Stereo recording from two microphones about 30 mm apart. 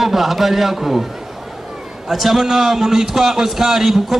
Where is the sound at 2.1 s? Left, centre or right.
Centre.